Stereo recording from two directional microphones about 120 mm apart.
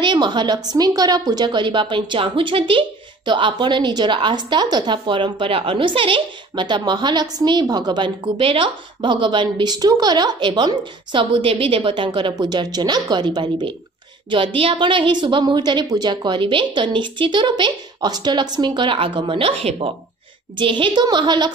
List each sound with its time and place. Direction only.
0.0 s a woman's voice: 40° right (ahead or behind)